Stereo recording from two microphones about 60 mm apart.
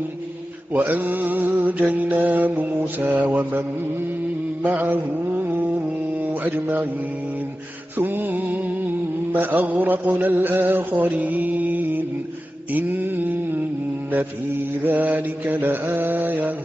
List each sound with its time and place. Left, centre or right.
0.7 s mantra: right
4.6 s mantra: right
8.0 s music: right
9.3 s mantra: right
14.9 s mantra: right